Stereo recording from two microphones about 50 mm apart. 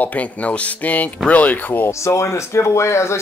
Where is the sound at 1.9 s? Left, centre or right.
Left.